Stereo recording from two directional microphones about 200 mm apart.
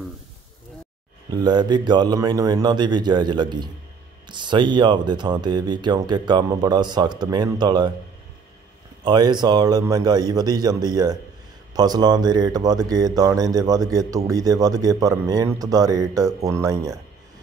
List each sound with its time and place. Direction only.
1.3 s speech: 20° right (ahead or behind)
9.0 s speech: 20° right (ahead or behind)